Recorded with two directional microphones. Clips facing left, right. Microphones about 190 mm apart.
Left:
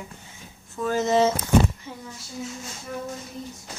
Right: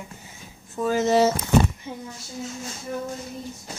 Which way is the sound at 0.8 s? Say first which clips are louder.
Right 2 dB; 15° right (ahead or behind).